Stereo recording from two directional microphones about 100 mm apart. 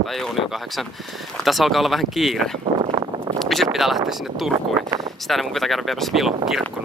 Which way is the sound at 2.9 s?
50° right (ahead or behind).